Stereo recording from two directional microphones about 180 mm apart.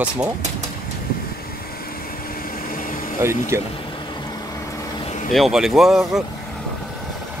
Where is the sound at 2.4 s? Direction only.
50° left (ahead or behind).